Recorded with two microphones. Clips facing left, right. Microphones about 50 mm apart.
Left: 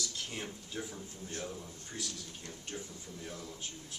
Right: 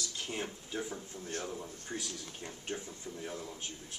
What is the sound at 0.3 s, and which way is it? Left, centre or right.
A man's voice, centre.